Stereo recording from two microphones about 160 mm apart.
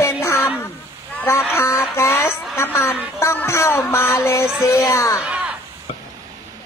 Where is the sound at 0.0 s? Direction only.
15° left (ahead or behind).